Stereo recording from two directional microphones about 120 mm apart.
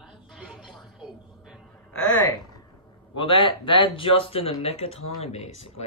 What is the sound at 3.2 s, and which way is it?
A man's voice, 45° left (ahead or behind).